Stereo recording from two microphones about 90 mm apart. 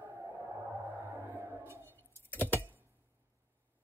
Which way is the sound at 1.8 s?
20° left (ahead or behind).